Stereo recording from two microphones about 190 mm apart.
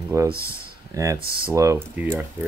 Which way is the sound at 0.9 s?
15° right (ahead or behind).